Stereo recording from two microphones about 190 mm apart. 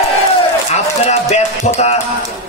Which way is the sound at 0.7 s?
35° left (ahead or behind).